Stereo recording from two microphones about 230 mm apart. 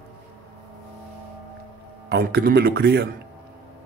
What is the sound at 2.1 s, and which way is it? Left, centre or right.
Speech, right.